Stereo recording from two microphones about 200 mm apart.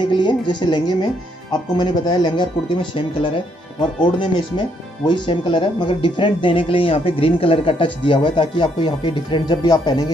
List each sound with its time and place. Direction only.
0.0 s speech: 25° left (ahead or behind)